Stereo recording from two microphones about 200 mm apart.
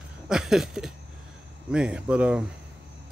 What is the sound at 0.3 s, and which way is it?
Speech, centre (ahead or behind).